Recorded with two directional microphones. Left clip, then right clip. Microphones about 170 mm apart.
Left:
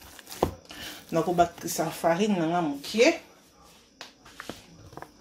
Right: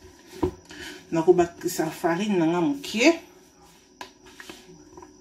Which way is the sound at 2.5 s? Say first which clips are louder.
Left 1 dB; 15° right (ahead or behind).